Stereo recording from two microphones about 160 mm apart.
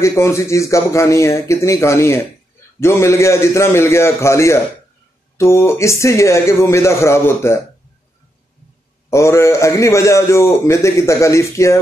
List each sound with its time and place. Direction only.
0.0 s speech: 20° left (ahead or behind)
9.1 s a man's voice: 20° left (ahead or behind)